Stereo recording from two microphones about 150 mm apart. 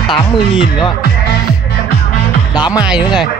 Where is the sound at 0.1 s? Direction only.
35° left (ahead or behind).